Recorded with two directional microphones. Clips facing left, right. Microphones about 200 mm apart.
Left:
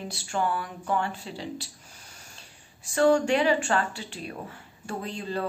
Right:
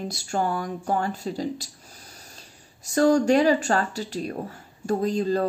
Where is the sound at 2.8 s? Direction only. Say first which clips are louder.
Right 2 dB; 40° right (ahead or behind).